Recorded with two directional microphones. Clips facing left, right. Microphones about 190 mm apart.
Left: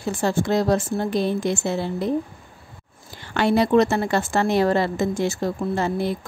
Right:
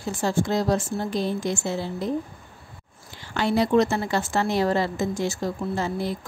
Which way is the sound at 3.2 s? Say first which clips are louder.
Left 3 dB; 60° left (ahead or behind).